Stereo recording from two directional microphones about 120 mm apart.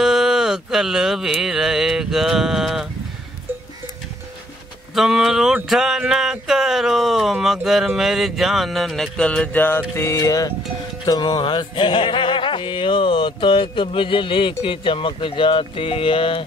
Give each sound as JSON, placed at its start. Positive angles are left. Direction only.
{"t": 0.0, "sound": "a sound", "side_deg": -5}
{"t": 4.9, "sound": "speech", "side_deg": -5}
{"t": 11.1, "sound": "music", "side_deg": 35}
{"t": 14.6, "sound": "speech", "side_deg": 45}